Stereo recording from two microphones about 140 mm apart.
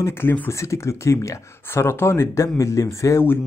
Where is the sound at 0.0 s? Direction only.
15° left (ahead or behind).